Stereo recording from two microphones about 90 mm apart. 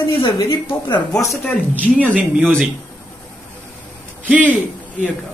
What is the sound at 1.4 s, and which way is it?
Speech, 15° left (ahead or behind).